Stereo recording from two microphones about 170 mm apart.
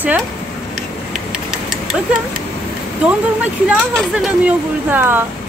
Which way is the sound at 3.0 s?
10° right (ahead or behind).